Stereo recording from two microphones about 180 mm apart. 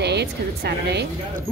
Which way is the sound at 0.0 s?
70° right (ahead or behind).